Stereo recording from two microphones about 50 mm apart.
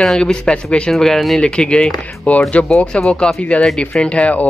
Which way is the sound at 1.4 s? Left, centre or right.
Centre.